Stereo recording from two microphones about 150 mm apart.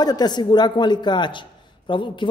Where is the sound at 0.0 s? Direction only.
25° left (ahead or behind).